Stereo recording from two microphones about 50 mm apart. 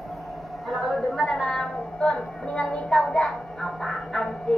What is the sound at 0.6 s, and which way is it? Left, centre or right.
A woman's voice, centre.